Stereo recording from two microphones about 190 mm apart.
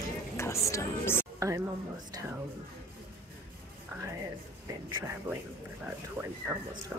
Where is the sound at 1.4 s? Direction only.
15° right (ahead or behind).